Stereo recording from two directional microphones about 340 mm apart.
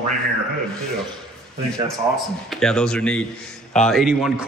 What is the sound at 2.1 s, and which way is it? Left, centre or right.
A man's voice, centre.